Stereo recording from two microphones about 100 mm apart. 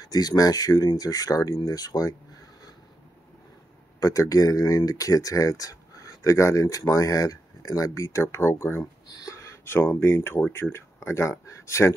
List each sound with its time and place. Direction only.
0.0 s speech: 40° left (ahead or behind)
4.0 s speech: 35° left (ahead or behind)
9.1 s a sound: 40° left (ahead or behind)
9.4 s speech: 25° left (ahead or behind)